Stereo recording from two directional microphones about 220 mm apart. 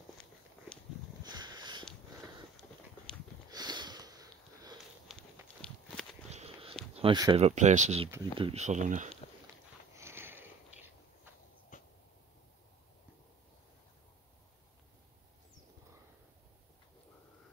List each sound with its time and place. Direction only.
1.2 s a sound: 20° right (ahead or behind)
3.4 s sniff: 20° right (ahead or behind)
5.1 s a sound: centre (ahead or behind)
5.6 s walk: 5° left (ahead or behind)
6.3 s walk: 25° right (ahead or behind)
7.0 s speech: 20° right (ahead or behind)
7.3 s speech: 30° right (ahead or behind)
9.9 s sniff: 10° right (ahead or behind)
11.7 s a sound: 35° left (ahead or behind)